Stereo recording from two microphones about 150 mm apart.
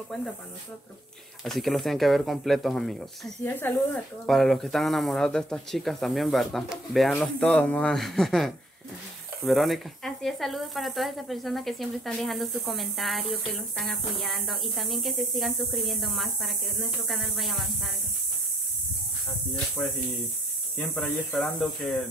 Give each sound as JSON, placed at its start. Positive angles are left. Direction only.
{"t": 1.4, "sound": "speech", "side_deg": 0}
{"t": 3.4, "sound": "speech", "side_deg": 15}
{"t": 4.3, "sound": "speech", "side_deg": 0}
{"t": 20.7, "sound": "speech", "side_deg": 10}